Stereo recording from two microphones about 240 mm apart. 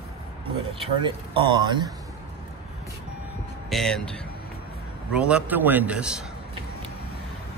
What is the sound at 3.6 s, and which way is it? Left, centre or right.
Speech, centre.